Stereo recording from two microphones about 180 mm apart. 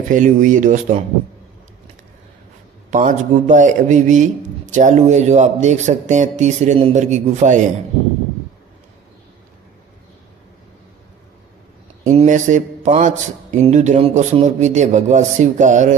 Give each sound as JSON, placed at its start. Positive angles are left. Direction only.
{"t": 0.1, "sound": "speech", "side_deg": -45}
{"t": 2.9, "sound": "speech", "side_deg": -45}
{"t": 12.1, "sound": "speech", "side_deg": -40}